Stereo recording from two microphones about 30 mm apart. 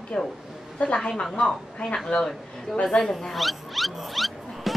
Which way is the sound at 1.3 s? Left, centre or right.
Centre.